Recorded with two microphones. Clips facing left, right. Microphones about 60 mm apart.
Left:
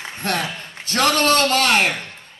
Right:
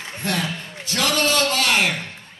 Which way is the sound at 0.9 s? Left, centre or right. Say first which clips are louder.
Left 4 dB; left.